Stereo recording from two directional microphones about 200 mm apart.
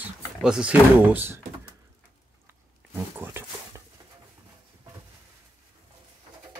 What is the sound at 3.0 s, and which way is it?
Speech, 10° right (ahead or behind).